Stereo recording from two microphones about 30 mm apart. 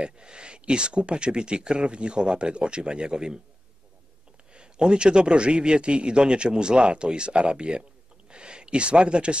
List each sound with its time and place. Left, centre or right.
0.0 s speech: right
4.6 s speech: right